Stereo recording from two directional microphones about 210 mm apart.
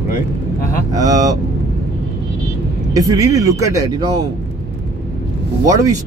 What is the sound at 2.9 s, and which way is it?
Speech, 15° right (ahead or behind).